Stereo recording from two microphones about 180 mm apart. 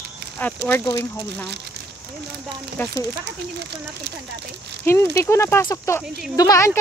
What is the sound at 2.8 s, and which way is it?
Speech, 10° left (ahead or behind).